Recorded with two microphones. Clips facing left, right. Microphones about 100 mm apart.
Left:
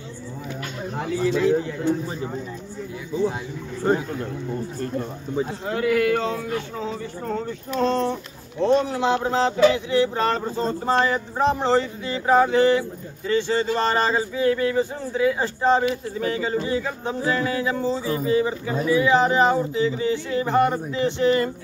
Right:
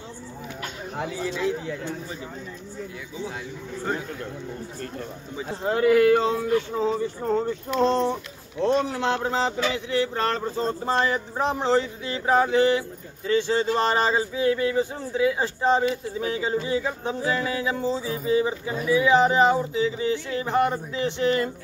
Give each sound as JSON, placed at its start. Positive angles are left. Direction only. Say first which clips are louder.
{"t": 0.9, "sound": "speech", "louder": "left 7 dB", "side_deg": 0}
{"t": 5.7, "sound": "speech", "louder": "right 4 dB", "side_deg": -30}
{"t": 8.5, "sound": "speech", "louder": "left 3 dB", "side_deg": -5}